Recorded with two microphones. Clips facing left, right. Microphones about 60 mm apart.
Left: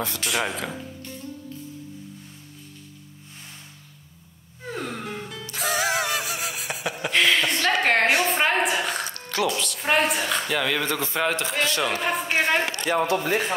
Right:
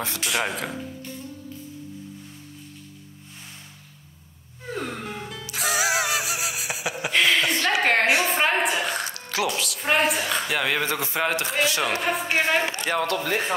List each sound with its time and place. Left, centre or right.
0.2 s a man's voice: centre
4.7 s music: centre
8.0 s a sound: centre
8.3 s a sound: centre
10.5 s a man's voice: centre
13.0 s speech: right